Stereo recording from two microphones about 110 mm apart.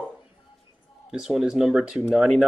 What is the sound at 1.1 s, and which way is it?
Speech, 5° right (ahead or behind).